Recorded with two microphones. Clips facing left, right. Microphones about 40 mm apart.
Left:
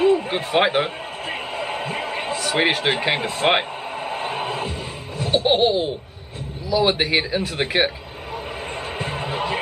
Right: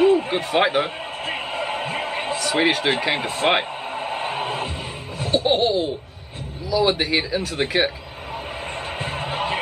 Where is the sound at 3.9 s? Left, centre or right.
Centre.